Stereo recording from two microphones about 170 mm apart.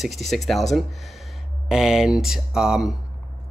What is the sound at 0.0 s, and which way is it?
Speech, centre (ahead or behind).